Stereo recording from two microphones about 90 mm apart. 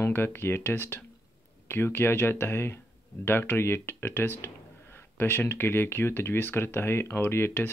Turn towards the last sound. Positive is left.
turn(degrees=25)  # may be behind; listen again after turning